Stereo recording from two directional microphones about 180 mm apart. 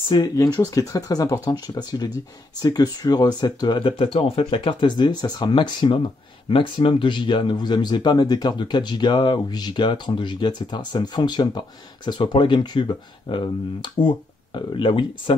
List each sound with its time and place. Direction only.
0.1 s speech: 25° left (ahead or behind)